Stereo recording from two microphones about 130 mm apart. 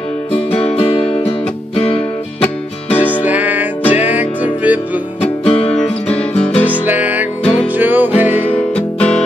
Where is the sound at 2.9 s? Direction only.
10° right (ahead or behind).